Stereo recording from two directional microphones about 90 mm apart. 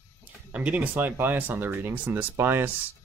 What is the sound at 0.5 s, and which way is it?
Speech, 15° right (ahead or behind).